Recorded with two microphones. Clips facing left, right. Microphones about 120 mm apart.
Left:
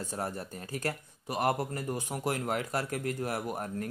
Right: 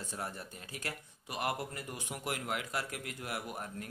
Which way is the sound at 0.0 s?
40° left (ahead or behind).